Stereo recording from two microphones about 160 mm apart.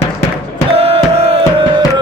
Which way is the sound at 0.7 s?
40° right (ahead or behind).